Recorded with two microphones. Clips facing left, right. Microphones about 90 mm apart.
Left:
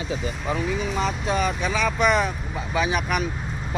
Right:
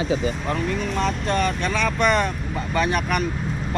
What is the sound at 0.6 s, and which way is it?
Speech, centre (ahead or behind).